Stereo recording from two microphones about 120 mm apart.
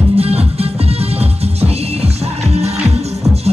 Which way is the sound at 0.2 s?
55° right (ahead or behind).